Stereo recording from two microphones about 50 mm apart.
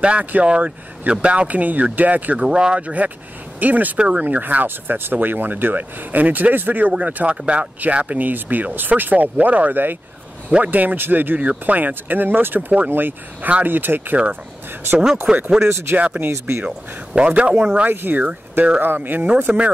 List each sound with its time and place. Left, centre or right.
0.0 s speech: right
2.4 s speech: centre
3.0 s speech: right
15.3 s speech: centre
15.6 s speech: right
16.0 s speech: right
16.3 s speech: right
16.6 s speech: right
17.8 s speech: right